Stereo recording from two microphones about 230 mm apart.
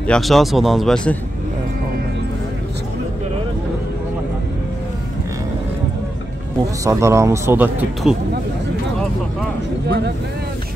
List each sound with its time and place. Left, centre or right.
0.0 s speech: centre
6.8 s speech: centre
9.8 s speech: right